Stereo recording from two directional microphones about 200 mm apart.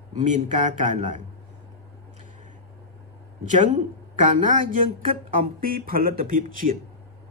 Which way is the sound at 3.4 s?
35° right (ahead or behind).